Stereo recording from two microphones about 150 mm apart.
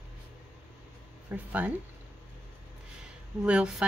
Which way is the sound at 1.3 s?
10° right (ahead or behind).